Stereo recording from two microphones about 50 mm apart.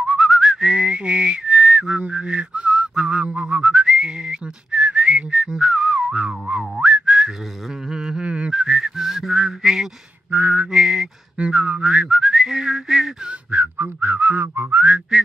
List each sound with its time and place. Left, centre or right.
0.0 s whistling: centre
0.7 s whistling: right
10.3 s whistling: right
10.7 s whistling: centre
13.5 s whistling: right
15.1 s whistling: centre